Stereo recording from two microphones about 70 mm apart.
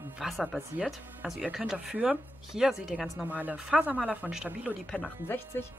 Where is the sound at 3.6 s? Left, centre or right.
Centre.